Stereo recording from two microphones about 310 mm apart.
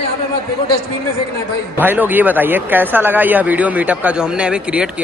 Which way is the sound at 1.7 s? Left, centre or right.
Centre.